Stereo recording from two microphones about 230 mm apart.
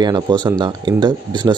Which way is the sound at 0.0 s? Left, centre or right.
Centre.